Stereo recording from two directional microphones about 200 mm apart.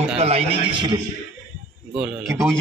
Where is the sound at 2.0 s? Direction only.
5° right (ahead or behind).